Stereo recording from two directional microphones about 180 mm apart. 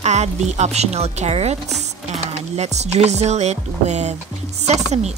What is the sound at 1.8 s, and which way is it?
Music, 40° right (ahead or behind).